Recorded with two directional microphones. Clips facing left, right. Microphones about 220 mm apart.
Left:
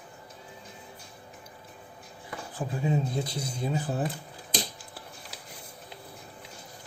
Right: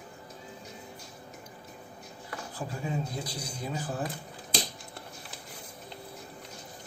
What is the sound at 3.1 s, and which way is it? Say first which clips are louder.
Speech: left 5 dB; 25° left (ahead or behind).